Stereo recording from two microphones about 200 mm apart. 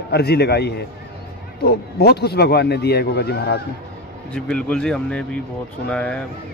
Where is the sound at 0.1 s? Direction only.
55° left (ahead or behind).